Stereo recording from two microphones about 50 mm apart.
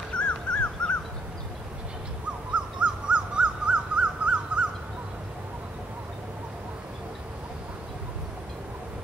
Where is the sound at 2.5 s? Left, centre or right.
Right.